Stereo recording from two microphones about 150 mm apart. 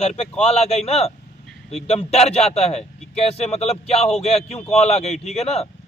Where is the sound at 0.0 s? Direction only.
50° left (ahead or behind).